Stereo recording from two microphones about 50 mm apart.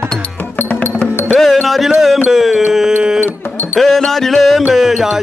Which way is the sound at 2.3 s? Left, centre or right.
Centre.